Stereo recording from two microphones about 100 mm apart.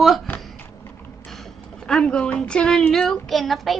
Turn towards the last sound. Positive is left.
turn(degrees=0)  # may be behind; listen again after turning